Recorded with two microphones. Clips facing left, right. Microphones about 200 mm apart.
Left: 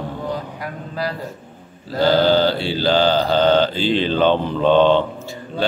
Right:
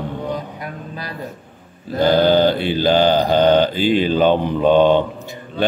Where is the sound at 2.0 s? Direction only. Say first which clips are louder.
Right 1 dB; 20° right (ahead or behind).